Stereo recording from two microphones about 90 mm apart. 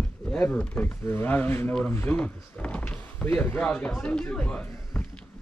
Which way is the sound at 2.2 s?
15° left (ahead or behind).